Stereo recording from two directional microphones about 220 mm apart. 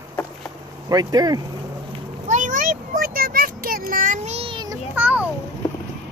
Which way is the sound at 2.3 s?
35° right (ahead or behind).